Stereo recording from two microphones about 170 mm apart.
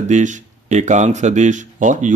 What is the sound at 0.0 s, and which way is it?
Speech, 45° right (ahead or behind).